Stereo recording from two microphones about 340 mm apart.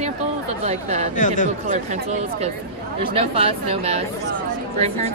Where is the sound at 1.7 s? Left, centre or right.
Centre.